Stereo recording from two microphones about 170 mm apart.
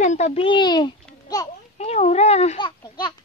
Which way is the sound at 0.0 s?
40° left (ahead or behind).